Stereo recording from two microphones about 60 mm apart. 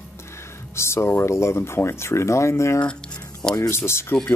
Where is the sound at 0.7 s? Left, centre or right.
Left.